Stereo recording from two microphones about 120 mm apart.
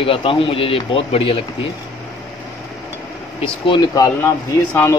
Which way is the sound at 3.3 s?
45° left (ahead or behind).